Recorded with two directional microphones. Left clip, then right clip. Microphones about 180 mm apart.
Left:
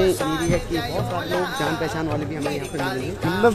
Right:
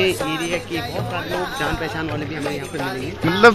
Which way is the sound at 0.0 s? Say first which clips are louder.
Even; centre (ahead or behind).